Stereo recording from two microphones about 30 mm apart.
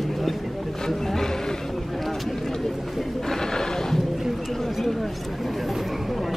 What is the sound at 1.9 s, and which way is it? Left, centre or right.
Speech, centre.